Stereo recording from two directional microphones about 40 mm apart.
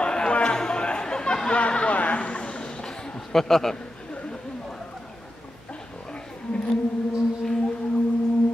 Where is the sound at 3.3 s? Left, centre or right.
Centre.